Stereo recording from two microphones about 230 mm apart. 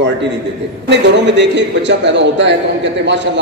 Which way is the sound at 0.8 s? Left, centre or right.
Right.